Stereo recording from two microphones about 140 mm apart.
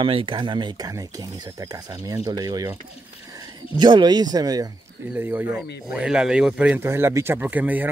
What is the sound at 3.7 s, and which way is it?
Speech, 30° right (ahead or behind).